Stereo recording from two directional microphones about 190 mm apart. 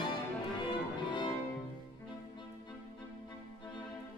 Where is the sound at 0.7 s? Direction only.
25° left (ahead or behind).